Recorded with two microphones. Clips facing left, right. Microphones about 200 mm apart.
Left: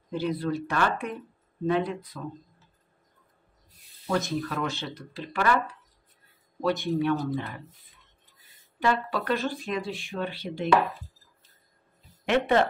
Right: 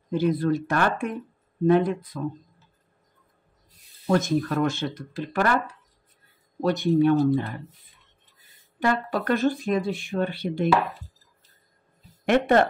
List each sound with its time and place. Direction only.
0.2 s speech: 50° right (ahead or behind)
4.1 s speech: 45° right (ahead or behind)
6.6 s speech: 45° right (ahead or behind)
8.7 s speech: 50° right (ahead or behind)
12.3 s speech: 50° right (ahead or behind)